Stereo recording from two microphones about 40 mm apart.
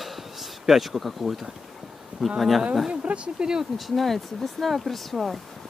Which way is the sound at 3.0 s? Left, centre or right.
Right.